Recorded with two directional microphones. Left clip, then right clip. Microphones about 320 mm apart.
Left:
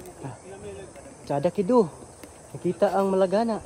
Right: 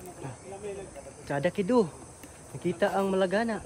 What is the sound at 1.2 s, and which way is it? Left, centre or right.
Speech, left.